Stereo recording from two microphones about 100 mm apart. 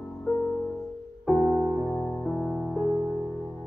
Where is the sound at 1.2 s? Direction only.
10° left (ahead or behind).